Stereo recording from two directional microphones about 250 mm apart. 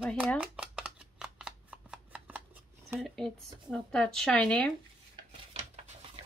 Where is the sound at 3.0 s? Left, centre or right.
Centre.